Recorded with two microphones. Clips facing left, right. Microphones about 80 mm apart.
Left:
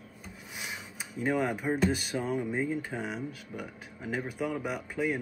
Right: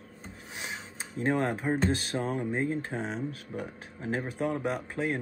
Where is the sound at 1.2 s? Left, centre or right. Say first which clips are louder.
Right 1 dB; right.